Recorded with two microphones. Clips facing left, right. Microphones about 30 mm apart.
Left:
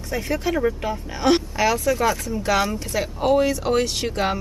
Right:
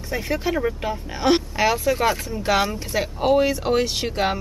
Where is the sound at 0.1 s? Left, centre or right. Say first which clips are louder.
Even; centre.